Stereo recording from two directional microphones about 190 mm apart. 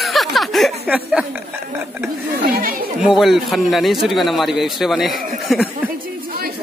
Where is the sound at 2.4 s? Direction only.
50° right (ahead or behind).